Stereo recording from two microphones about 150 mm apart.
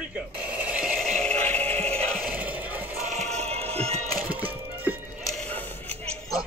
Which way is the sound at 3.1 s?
50° right (ahead or behind).